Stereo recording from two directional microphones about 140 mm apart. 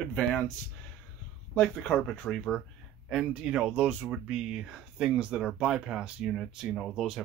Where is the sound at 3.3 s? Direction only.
10° right (ahead or behind).